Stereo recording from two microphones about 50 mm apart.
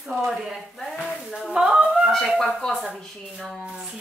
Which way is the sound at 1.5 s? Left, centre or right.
Centre.